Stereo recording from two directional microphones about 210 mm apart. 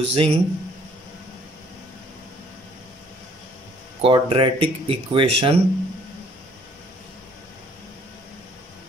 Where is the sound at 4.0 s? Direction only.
25° right (ahead or behind).